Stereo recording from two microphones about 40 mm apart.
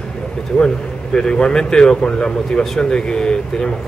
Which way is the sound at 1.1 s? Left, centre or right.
Centre.